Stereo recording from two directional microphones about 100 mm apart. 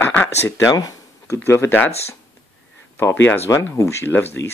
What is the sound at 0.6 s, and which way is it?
Speech, 35° left (ahead or behind).